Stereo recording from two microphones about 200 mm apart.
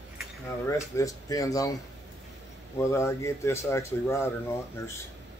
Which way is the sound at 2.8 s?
15° left (ahead or behind).